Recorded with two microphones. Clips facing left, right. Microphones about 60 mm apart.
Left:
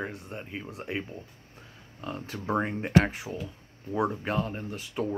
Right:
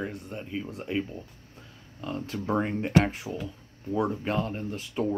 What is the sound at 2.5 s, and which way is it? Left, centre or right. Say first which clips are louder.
Speech: right 1 dB; left.